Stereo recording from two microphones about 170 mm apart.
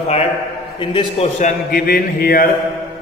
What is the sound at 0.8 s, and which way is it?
A man's voice, 30° left (ahead or behind).